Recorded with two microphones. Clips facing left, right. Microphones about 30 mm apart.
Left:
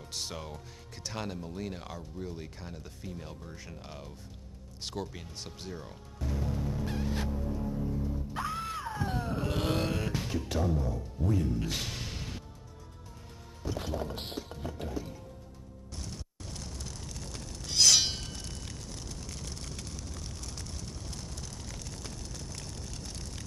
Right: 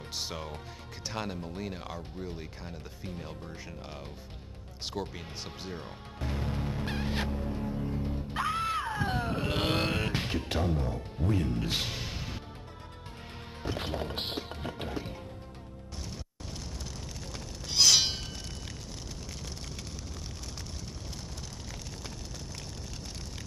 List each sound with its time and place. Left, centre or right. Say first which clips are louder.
0.1 s speech: right 1 dB; centre
5.7 s music: right 2 dB; right
11.9 s music: right 2 dB; centre
13.7 s music: right 1 dB; right
16.0 s a sound: even; centre